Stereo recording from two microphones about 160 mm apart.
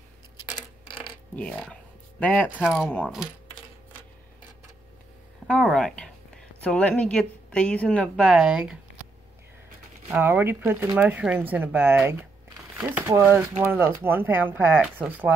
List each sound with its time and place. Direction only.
0.5 s a sound: 25° left (ahead or behind)
1.3 s speech: 5° left (ahead or behind)
2.6 s speech: 5° right (ahead or behind)
2.9 s speech: 5° left (ahead or behind)
5.5 s a woman's voice: centre (ahead or behind)
10.0 s speech: 10° right (ahead or behind)